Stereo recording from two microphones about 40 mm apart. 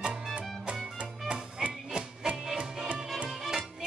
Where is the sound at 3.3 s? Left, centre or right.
Centre.